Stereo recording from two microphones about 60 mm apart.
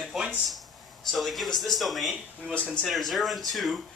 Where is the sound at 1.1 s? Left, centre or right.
Centre.